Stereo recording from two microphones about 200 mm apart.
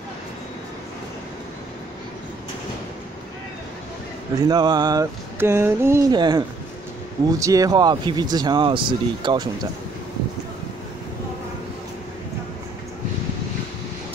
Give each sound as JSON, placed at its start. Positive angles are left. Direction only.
{"t": 4.5, "sound": "speech", "side_deg": -20}